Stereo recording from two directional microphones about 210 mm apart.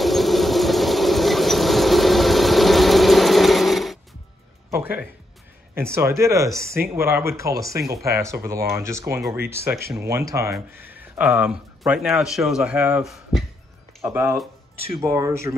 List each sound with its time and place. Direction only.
0.0 s train: centre (ahead or behind)
4.6 s music: 10° right (ahead or behind)
5.8 s speech: 10° right (ahead or behind)
14.0 s speech: 15° right (ahead or behind)